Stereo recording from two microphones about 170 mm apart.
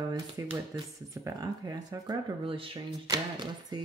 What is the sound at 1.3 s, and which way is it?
Speech, 20° right (ahead or behind).